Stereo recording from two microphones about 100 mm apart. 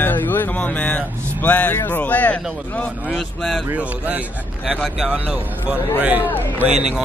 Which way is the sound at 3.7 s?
15° right (ahead or behind).